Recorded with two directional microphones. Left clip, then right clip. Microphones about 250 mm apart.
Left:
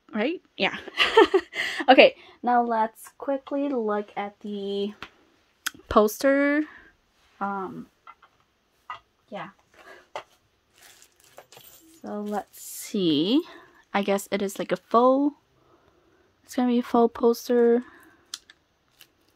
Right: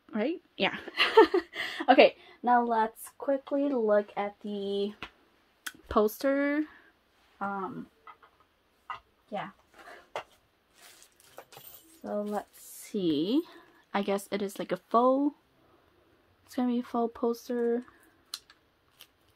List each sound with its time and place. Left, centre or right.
0.1 s a woman's voice: centre
7.3 s a sound: left
12.0 s speech: left
16.4 s speech: left